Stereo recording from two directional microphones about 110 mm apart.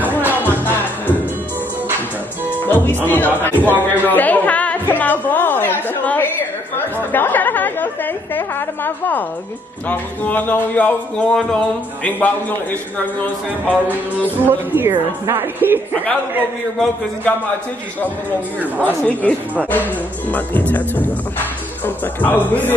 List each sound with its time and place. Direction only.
0.3 s music: 20° left (ahead or behind)
2.6 s music: 15° left (ahead or behind)
3.1 s speech: 15° left (ahead or behind)
4.0 s a sound: 15° left (ahead or behind)
7.0 s speech: 20° left (ahead or behind)
14.4 s a woman's voice: 20° right (ahead or behind)
18.8 s speech: 15° left (ahead or behind)